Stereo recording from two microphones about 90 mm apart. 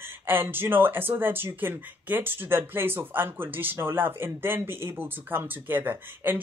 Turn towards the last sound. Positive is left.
turn(degrees=-25)  # may be behind; listen again after turning